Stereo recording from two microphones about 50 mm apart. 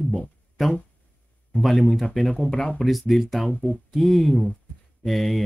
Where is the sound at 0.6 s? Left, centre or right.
Centre.